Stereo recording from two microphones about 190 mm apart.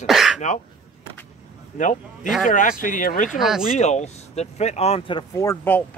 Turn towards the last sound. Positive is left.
turn(degrees=10)  # may be behind; listen again after turning